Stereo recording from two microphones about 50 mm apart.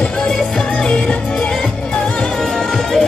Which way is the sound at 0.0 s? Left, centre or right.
Centre.